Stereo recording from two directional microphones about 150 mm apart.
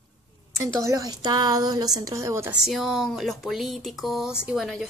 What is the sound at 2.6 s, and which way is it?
Speech, centre (ahead or behind).